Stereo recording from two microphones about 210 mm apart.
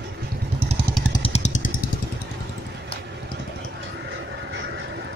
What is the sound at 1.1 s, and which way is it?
Vehicle, 30° left (ahead or behind).